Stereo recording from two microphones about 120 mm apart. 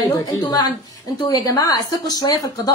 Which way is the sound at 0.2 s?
30° left (ahead or behind).